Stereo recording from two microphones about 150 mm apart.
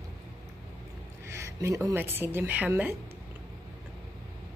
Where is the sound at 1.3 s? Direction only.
20° right (ahead or behind).